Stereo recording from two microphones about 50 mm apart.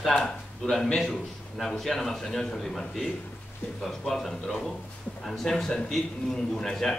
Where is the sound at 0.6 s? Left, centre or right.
Centre.